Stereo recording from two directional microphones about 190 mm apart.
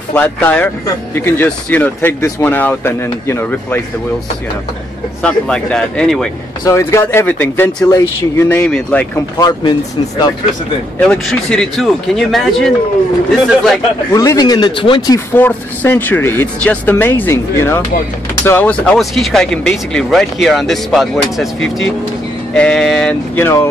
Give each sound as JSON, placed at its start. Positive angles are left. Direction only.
{"t": 0.1, "sound": "speech", "side_deg": 10}
{"t": 5.2, "sound": "speech", "side_deg": 5}
{"t": 6.6, "sound": "speech", "side_deg": 15}
{"t": 9.4, "sound": "speech", "side_deg": 20}
{"t": 11.0, "sound": "speech", "side_deg": 5}
{"t": 14.1, "sound": "speech", "side_deg": 20}
{"t": 21.5, "sound": "speech", "side_deg": 85}
{"t": 22.5, "sound": "speech", "side_deg": 5}